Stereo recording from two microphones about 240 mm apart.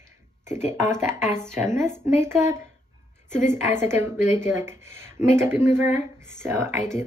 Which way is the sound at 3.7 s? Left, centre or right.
Left.